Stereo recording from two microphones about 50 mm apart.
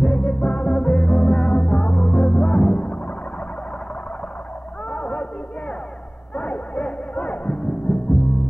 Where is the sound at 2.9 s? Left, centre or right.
Left.